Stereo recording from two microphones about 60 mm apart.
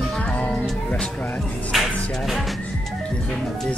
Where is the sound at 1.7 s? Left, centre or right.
Centre.